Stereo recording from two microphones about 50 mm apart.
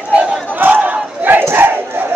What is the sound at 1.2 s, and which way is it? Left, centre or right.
Battle cry, right.